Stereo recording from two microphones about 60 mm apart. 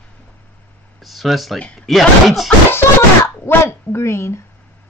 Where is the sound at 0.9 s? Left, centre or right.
Centre.